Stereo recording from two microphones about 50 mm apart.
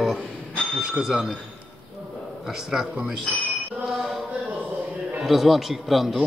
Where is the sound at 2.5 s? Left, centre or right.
Centre.